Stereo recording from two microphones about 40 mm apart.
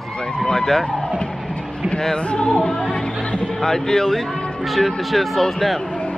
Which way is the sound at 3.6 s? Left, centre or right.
Centre.